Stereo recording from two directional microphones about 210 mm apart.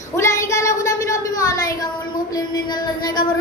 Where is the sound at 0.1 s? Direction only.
15° left (ahead or behind).